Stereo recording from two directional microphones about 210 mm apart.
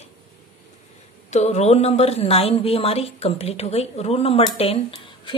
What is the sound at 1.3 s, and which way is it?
A woman's voice, 30° left (ahead or behind).